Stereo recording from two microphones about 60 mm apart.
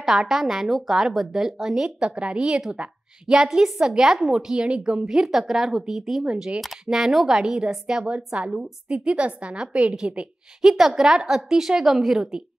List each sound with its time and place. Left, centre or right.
0.0 s a woman's voice: centre
2.0 s a woman's voice: centre